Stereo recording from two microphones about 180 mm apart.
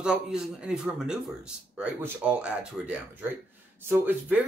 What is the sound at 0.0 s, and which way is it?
Speech, 5° right (ahead or behind).